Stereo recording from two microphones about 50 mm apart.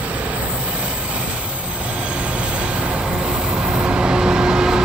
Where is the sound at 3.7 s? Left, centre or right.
Right.